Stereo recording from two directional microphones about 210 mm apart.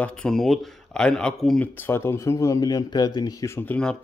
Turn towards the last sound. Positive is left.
turn(degrees=5)  # may be behind; listen again after turning